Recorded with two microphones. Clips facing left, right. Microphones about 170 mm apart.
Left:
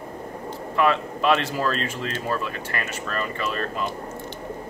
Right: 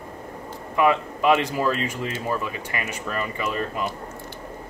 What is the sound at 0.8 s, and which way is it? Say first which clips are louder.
Speech: right 1 dB; 15° right (ahead or behind).